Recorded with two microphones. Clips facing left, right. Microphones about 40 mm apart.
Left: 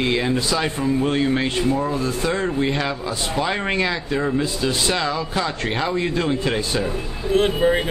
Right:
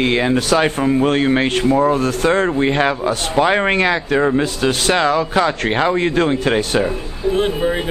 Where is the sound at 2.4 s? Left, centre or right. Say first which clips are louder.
Right 6 dB; right.